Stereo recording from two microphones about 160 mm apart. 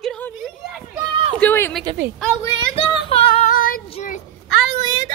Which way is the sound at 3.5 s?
60° left (ahead or behind).